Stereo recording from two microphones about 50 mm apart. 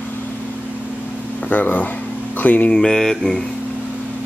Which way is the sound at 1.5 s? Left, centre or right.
Left.